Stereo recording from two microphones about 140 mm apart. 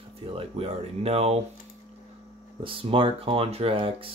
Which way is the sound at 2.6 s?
40° right (ahead or behind).